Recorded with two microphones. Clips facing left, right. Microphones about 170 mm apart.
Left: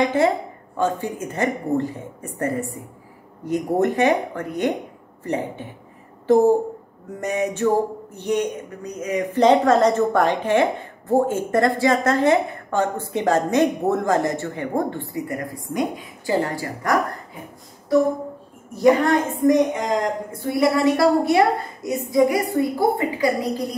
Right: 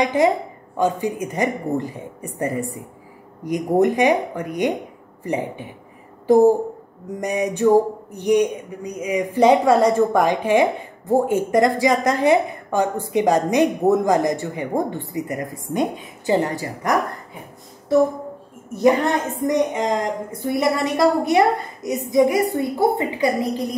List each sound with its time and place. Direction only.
0.0 s a woman's voice: 15° right (ahead or behind)
18.8 s a woman's voice: 20° right (ahead or behind)